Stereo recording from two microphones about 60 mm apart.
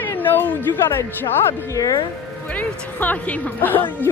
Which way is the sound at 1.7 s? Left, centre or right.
Left.